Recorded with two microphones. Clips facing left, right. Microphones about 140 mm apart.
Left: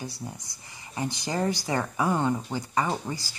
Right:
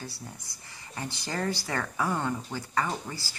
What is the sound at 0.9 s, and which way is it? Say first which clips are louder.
Speech: left 5 dB; 15° left (ahead or behind).